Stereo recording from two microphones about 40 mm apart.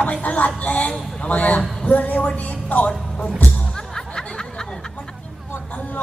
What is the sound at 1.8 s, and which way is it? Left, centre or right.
Speech, left.